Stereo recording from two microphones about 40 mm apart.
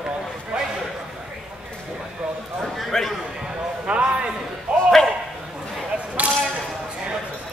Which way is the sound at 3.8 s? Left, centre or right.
Right.